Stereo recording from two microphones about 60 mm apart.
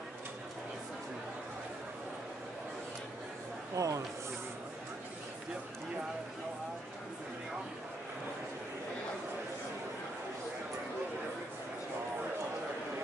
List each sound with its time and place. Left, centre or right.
3.7 s speech: right